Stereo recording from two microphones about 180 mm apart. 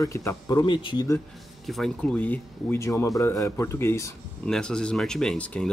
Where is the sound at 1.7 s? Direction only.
5° left (ahead or behind).